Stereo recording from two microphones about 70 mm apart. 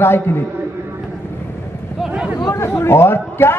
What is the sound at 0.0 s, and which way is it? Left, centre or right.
Speech, left.